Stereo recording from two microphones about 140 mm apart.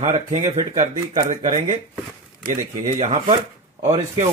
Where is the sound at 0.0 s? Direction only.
55° right (ahead or behind).